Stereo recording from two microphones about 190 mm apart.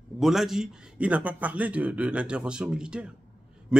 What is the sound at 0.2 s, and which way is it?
A man's voice, centre (ahead or behind).